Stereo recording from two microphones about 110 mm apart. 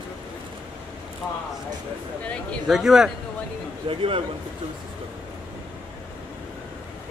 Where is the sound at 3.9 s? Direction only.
55° right (ahead or behind).